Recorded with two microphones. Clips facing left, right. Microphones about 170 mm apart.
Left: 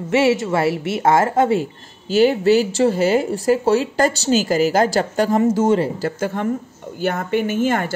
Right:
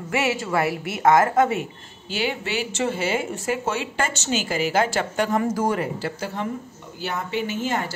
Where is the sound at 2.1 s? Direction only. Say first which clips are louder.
Left 13 dB; 40° left (ahead or behind); by 5.9 s 25° left (ahead or behind).